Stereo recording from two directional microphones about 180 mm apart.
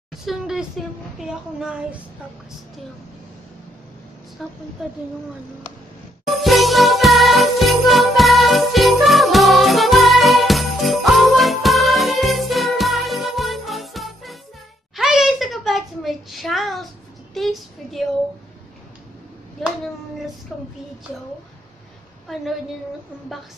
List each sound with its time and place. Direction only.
0.2 s speech: centre (ahead or behind)
4.4 s speech: centre (ahead or behind)
6.2 s jingle bell: centre (ahead or behind)
15.0 s a sound: centre (ahead or behind)
17.3 s speech: centre (ahead or behind)
19.6 s speech: centre (ahead or behind)
22.3 s speech: centre (ahead or behind)